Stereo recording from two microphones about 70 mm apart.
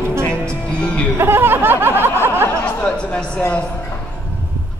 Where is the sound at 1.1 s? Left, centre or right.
Right.